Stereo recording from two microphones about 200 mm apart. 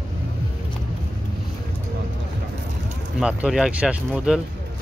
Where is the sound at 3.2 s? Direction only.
5° right (ahead or behind).